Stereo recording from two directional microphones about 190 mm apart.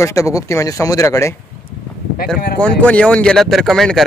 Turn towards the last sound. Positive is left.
turn(degrees=0)  # may be behind; listen again after turning